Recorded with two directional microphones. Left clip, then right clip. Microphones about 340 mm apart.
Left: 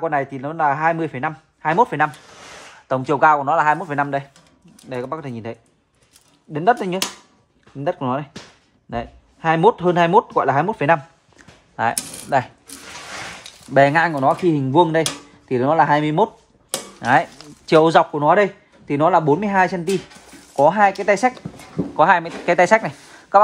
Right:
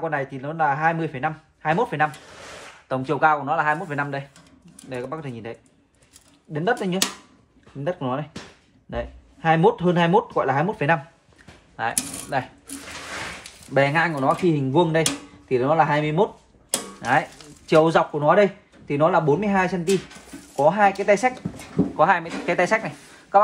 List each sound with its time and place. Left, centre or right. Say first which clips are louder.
0.0 s speech: left 5 dB; left
11.7 s coin: left 5 dB; left
13.7 s speech: left 5 dB; left